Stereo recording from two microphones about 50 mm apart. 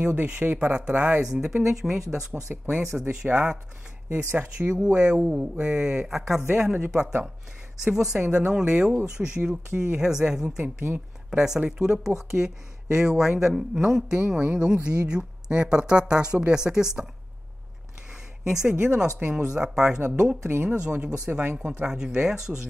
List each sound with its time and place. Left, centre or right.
0.0 s speech: right
0.7 s speech: right
1.2 s speech: centre
4.1 s speech: right
6.0 s speech: centre
6.5 s speech: right
7.8 s speech: centre
10.6 s speech: right
11.2 s speech: centre
18.5 s speech: centre